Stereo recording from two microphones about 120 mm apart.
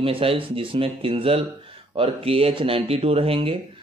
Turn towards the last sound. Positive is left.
turn(degrees=-50)  # may be behind; listen again after turning